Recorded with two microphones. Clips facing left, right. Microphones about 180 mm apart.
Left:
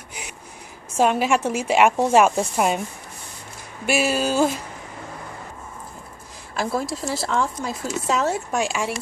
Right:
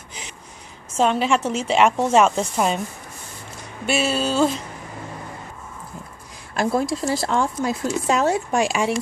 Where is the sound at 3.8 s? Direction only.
10° left (ahead or behind).